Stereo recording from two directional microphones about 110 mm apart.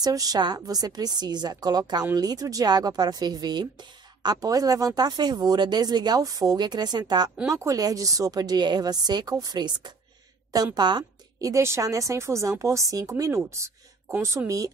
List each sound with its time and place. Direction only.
0.0 s a woman's voice: 35° right (ahead or behind)
11.5 s a woman's voice: 25° right (ahead or behind)